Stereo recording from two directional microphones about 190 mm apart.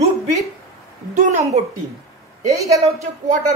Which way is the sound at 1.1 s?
40° right (ahead or behind).